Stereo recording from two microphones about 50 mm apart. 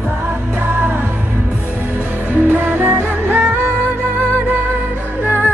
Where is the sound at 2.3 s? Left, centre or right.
Right.